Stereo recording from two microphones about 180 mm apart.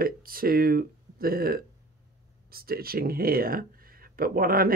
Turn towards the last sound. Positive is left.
turn(degrees=-55)  # may be behind; listen again after turning